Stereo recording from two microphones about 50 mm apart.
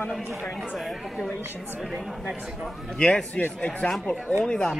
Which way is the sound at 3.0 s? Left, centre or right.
Centre.